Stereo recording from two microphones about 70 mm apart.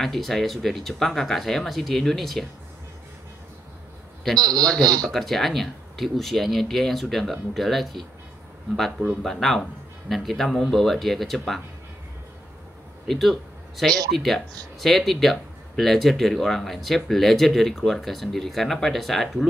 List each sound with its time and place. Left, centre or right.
0.0 s speech: centre
4.4 s a man's voice: right
5.0 s speech: centre
13.0 s a man's voice: centre